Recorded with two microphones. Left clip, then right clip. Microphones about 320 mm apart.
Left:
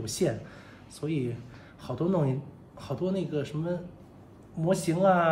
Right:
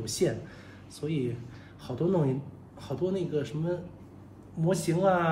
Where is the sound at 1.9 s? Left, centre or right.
Left.